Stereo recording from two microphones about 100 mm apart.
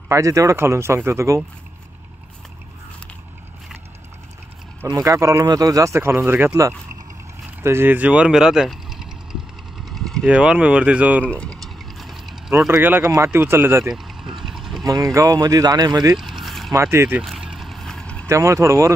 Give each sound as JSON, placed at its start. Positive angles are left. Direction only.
{"t": 0.1, "sound": "speech", "side_deg": -35}
{"t": 4.8, "sound": "speech", "side_deg": -35}
{"t": 7.6, "sound": "speech", "side_deg": -25}
{"t": 9.8, "sound": "vehicle", "side_deg": 0}
{"t": 10.2, "sound": "speech", "side_deg": -10}
{"t": 11.2, "sound": "a sound", "side_deg": 10}
{"t": 12.8, "sound": "speech", "side_deg": -15}
{"t": 13.8, "sound": "vehicle", "side_deg": -5}
{"t": 14.9, "sound": "speech", "side_deg": -35}
{"t": 16.2, "sound": "mechanisms", "side_deg": 0}
{"t": 16.7, "sound": "speech", "side_deg": -25}
{"t": 17.2, "sound": "vehicle", "side_deg": 0}
{"t": 18.3, "sound": "speech", "side_deg": -30}